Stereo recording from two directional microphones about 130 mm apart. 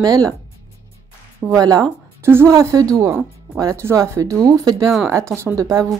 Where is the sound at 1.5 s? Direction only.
30° right (ahead or behind).